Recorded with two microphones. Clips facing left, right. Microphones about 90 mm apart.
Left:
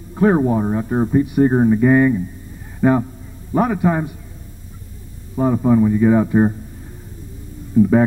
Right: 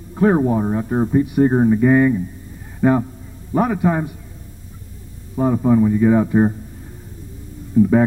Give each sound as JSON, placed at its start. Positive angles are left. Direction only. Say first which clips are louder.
{"t": 0.1, "sound": "a man's voice", "louder": "even", "side_deg": 15}
{"t": 5.3, "sound": "speech", "louder": "even", "side_deg": 20}